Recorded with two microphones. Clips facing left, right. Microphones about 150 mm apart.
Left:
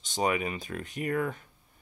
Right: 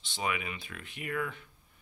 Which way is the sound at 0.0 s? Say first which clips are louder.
Left 7 dB; 40° left (ahead or behind).